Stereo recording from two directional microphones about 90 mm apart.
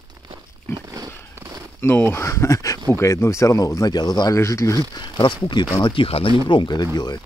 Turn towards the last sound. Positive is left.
turn(degrees=50)  # may be behind; listen again after turning